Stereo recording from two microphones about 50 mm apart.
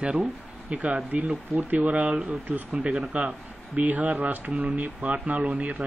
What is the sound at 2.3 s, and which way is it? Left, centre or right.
Speech, right.